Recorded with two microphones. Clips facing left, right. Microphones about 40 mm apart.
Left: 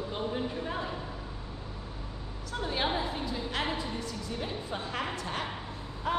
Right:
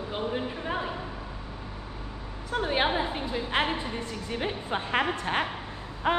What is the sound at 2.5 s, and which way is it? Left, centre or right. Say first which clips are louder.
A woman's voice: right 5 dB; right.